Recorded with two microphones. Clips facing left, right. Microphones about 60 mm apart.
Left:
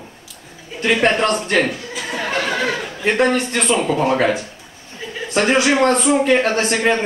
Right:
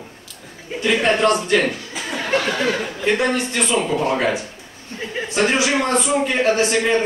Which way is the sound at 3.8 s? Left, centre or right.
Centre.